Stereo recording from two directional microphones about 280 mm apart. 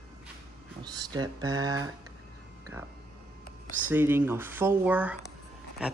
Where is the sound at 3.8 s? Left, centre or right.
Centre.